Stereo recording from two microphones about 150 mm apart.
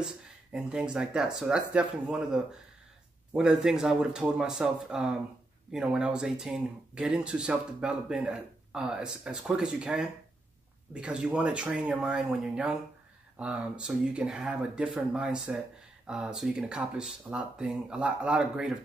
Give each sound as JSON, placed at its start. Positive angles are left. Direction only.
{"t": 0.0, "sound": "speech", "side_deg": -5}